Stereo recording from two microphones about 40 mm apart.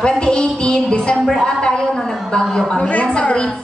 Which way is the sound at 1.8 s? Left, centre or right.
Centre.